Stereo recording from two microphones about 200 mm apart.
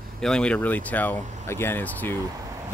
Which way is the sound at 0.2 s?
5° left (ahead or behind).